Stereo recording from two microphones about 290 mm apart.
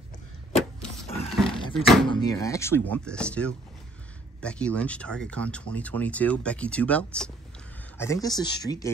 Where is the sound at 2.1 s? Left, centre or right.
Centre.